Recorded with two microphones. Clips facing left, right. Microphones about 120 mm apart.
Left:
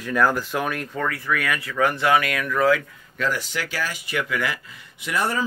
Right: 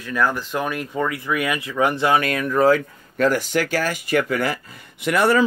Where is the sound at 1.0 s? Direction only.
15° right (ahead or behind); by 4.6 s 40° right (ahead or behind).